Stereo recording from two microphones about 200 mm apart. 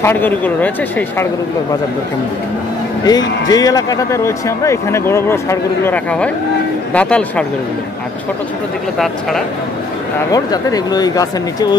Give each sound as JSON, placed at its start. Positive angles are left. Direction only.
{"t": 0.0, "sound": "speech", "side_deg": 10}
{"t": 3.0, "sound": "speech", "side_deg": 20}
{"t": 8.9, "sound": "speech", "side_deg": 0}
{"t": 10.3, "sound": "speech", "side_deg": 20}